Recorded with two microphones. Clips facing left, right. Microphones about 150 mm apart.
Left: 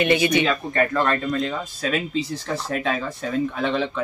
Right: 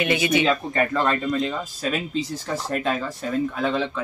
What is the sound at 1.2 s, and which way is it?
Speech, 5° right (ahead or behind).